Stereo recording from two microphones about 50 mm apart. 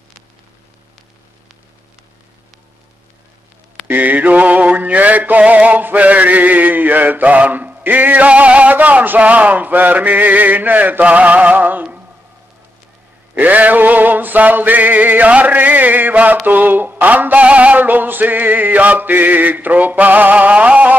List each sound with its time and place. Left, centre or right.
3.8 s mantra: right
13.3 s mantra: right